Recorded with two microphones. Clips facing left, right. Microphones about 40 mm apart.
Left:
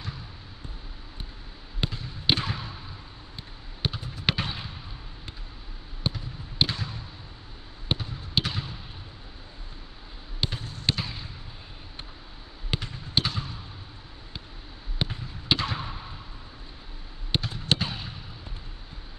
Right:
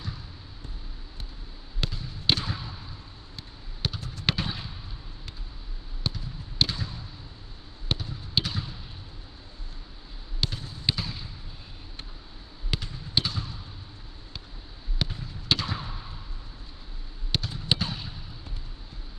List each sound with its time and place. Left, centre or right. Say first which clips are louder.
1.8 s basketball bounce: left 2 dB; left
3.3 s a sound: even; left
4.4 s fireworks: left 1 dB; left
6.0 s basketball bounce: left 2 dB; left
10.4 s basketball bounce: left 1 dB; left
11.0 s fireworks: left 1 dB; left
12.7 s basketball bounce: left 1 dB; left
15.0 s basketball bounce: left 1 dB; centre
17.3 s a sound: left 1 dB; centre
17.7 s fireworks: left 1 dB; centre